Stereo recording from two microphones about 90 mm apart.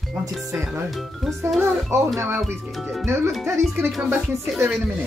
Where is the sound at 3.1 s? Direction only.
30° right (ahead or behind).